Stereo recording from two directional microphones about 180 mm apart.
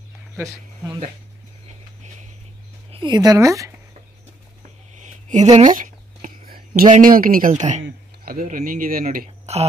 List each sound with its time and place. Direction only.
2.9 s speech: 25° right (ahead or behind)
4.9 s speech: 40° right (ahead or behind)